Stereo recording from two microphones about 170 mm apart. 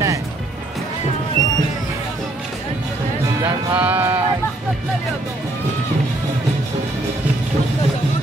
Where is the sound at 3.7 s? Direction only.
10° right (ahead or behind).